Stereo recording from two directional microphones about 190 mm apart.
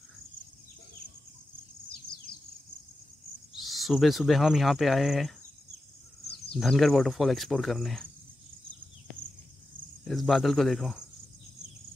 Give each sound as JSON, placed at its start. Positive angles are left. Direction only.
{"t": 2.3, "sound": "cricket", "side_deg": 55}
{"t": 3.5, "sound": "speech", "side_deg": 0}
{"t": 6.5, "sound": "speech", "side_deg": 0}
{"t": 10.0, "sound": "speech", "side_deg": 0}